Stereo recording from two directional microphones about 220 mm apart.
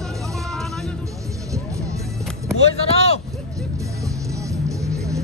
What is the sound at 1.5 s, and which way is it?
Music, 15° right (ahead or behind).